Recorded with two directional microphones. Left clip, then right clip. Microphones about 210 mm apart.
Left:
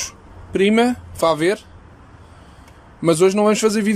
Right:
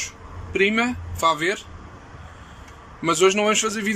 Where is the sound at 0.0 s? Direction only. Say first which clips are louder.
Left 2 dB; 25° left (ahead or behind).